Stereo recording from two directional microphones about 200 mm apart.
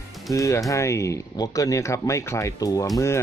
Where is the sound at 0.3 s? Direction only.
15° left (ahead or behind).